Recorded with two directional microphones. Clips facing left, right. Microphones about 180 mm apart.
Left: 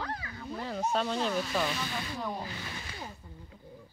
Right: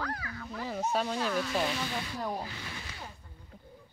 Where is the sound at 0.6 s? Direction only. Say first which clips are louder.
Even; 10° right (ahead or behind).